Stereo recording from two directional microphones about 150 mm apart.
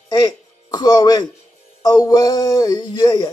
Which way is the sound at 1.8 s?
25° left (ahead or behind).